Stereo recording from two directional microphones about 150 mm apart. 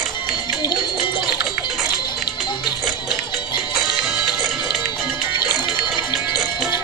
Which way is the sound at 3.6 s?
Centre (ahead or behind).